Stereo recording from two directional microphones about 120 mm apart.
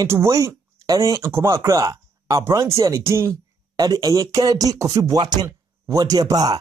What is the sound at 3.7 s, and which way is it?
Speech, 35° right (ahead or behind).